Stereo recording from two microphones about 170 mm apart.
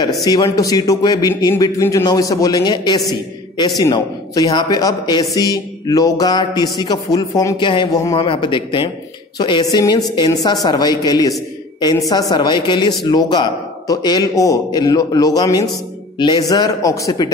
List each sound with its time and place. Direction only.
0.0 s a man's voice: 20° left (ahead or behind)